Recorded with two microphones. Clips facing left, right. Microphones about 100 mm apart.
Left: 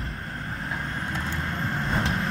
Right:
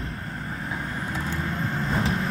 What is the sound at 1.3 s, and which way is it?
Vehicle, centre (ahead or behind).